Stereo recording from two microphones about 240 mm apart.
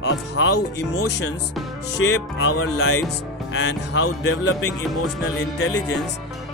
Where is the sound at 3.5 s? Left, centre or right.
Left.